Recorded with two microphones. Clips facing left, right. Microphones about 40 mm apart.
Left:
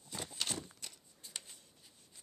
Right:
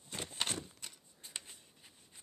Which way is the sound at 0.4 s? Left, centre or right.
Right.